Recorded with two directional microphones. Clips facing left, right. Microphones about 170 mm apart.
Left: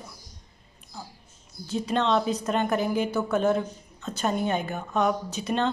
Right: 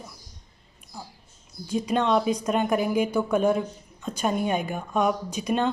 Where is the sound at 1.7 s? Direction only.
10° right (ahead or behind).